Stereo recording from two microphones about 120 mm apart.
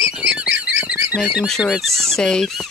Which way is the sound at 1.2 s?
10° right (ahead or behind).